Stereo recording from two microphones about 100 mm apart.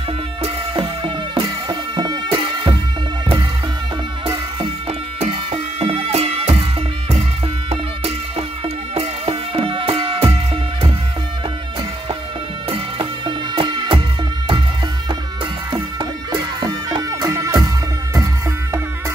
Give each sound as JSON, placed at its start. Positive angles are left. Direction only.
{"t": 1.0, "sound": "music", "side_deg": -50}
{"t": 4.6, "sound": "music", "side_deg": -65}
{"t": 7.7, "sound": "music", "side_deg": -80}
{"t": 13.6, "sound": "music", "side_deg": -60}
{"t": 15.7, "sound": "music", "side_deg": -55}
{"t": 16.6, "sound": "music", "side_deg": -40}